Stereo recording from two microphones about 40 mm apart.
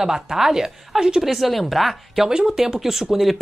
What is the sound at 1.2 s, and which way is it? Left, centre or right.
A woman's voice, centre.